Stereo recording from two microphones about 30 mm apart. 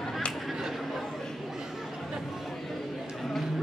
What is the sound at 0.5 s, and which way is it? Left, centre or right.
Chatter, centre.